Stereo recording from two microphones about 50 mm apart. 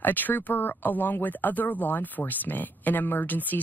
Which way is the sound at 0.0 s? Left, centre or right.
Left.